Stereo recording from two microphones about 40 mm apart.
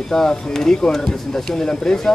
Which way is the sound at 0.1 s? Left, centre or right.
Centre.